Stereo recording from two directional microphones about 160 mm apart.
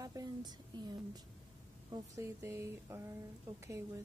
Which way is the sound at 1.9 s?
20° right (ahead or behind).